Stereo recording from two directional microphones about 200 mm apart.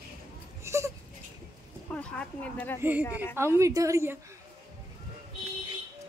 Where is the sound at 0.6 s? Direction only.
15° right (ahead or behind).